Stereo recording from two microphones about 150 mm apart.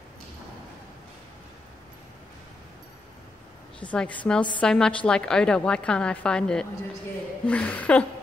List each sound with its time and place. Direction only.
3.8 s a woman's voice: 10° left (ahead or behind)